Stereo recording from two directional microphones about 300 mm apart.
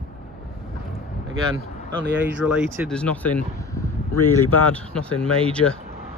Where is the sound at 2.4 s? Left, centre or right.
Centre.